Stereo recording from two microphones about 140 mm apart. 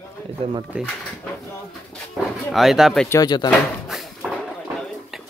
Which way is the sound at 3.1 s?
30° left (ahead or behind).